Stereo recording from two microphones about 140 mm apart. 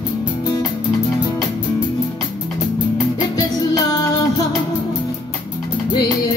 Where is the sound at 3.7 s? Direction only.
25° left (ahead or behind).